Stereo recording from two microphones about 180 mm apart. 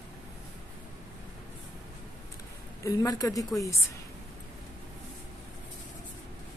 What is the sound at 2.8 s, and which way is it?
Speech, 20° left (ahead or behind).